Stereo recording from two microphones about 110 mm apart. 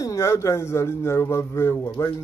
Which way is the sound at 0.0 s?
25° left (ahead or behind).